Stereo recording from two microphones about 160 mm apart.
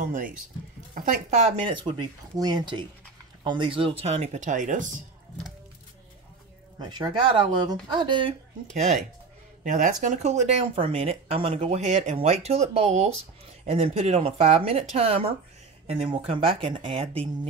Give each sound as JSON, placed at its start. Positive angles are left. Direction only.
{"t": 0.0, "sound": "speech", "side_deg": -50}
{"t": 1.6, "sound": "speech", "side_deg": -30}
{"t": 6.8, "sound": "speech", "side_deg": -30}
{"t": 8.6, "sound": "speech", "side_deg": -50}